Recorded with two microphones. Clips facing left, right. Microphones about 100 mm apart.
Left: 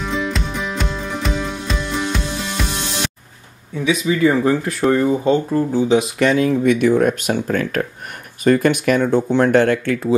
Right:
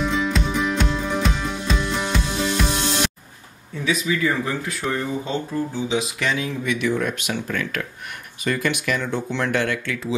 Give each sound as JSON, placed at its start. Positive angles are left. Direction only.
{"t": 0.0, "sound": "music", "side_deg": 0}
{"t": 4.2, "sound": "speech", "side_deg": 30}
{"t": 4.6, "sound": "speech", "side_deg": 45}